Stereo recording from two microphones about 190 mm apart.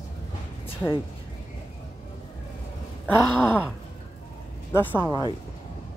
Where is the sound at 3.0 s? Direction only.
10° left (ahead or behind).